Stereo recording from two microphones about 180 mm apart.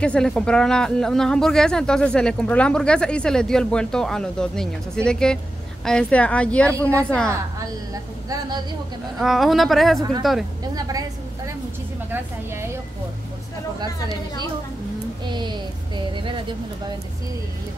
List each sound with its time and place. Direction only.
0.0 s speech: 5° left (ahead or behind)
7.2 s a woman's voice: 20° right (ahead or behind)
9.2 s speech: centre (ahead or behind)
10.7 s a woman's voice: 20° right (ahead or behind)
15.2 s a woman's voice: 25° right (ahead or behind)